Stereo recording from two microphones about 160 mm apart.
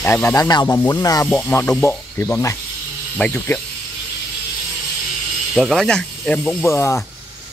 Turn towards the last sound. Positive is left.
turn(degrees=15)  # may be behind; listen again after turning